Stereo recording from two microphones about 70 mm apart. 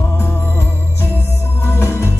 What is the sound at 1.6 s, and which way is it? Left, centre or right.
Music, left.